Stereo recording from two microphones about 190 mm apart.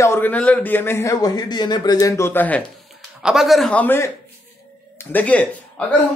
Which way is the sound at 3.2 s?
Centre (ahead or behind).